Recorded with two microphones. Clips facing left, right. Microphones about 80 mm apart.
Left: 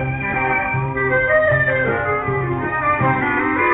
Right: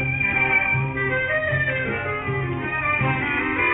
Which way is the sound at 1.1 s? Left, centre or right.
Left.